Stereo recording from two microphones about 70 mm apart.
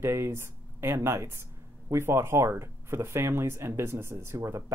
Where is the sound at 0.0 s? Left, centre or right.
Right.